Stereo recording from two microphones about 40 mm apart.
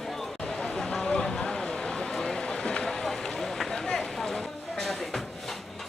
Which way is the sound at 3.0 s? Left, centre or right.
Centre.